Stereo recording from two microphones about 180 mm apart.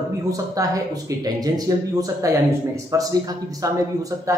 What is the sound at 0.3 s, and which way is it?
Speech, 20° right (ahead or behind).